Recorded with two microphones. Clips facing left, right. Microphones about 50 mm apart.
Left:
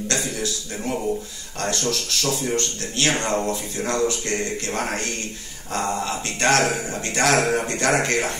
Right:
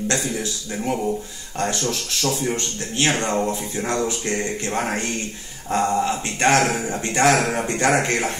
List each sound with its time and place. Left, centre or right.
0.1 s speech: right